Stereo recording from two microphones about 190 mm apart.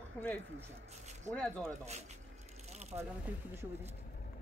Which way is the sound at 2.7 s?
35° right (ahead or behind).